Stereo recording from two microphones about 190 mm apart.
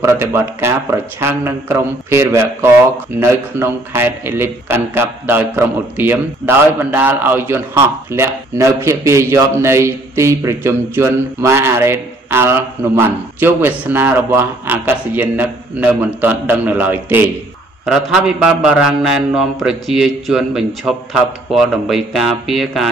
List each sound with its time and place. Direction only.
0.0 s a man's voice: 15° right (ahead or behind)